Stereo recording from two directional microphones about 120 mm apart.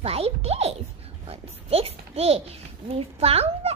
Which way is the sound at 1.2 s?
55° right (ahead or behind).